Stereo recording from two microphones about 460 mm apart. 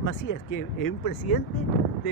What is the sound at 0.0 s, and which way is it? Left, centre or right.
Speech, left.